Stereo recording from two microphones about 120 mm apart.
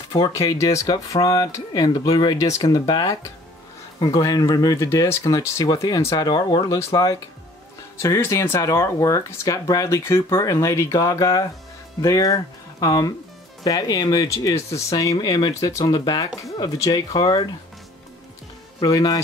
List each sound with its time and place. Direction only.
0.1 s speech: 35° left (ahead or behind)
18.8 s speech: 35° left (ahead or behind)